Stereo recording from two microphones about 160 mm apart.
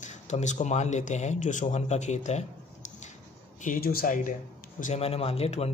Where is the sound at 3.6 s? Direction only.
60° left (ahead or behind).